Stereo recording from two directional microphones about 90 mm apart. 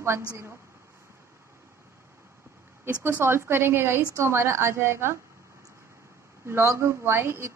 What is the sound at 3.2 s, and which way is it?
A woman's voice, 25° right (ahead or behind).